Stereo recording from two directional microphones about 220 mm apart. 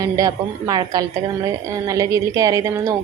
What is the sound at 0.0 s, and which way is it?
A woman's voice, 15° right (ahead or behind).